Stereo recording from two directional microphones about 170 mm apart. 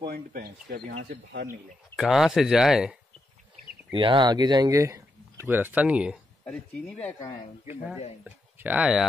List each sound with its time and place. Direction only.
0.0 s speech: 65° right (ahead or behind)
1.1 s speech: 90° right
2.0 s speech: centre (ahead or behind)
3.9 s speech: 30° right (ahead or behind); by 6.1 s 5° right (ahead or behind)
6.4 s speech: 5° left (ahead or behind)
8.2 s speech: 10° right (ahead or behind)